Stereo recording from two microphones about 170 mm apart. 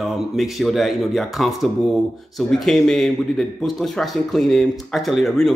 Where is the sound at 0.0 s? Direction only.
Centre (ahead or behind).